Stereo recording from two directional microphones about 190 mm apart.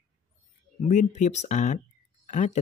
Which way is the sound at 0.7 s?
40° left (ahead or behind).